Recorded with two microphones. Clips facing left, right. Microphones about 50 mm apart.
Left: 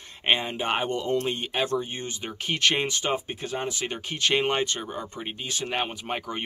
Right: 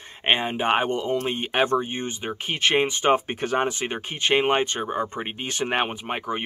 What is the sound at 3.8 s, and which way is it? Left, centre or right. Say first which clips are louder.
Speech: right 1 dB; right.